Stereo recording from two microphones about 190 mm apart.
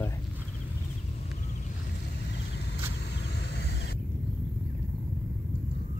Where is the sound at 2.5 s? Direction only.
60° left (ahead or behind).